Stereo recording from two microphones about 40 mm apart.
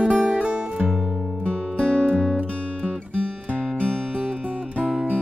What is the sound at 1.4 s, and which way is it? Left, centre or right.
Music, left.